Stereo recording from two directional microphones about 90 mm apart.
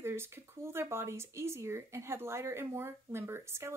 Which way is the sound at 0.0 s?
25° right (ahead or behind).